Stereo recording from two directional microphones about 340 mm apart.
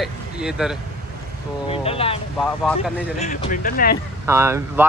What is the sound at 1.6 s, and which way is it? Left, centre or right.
Speech, centre.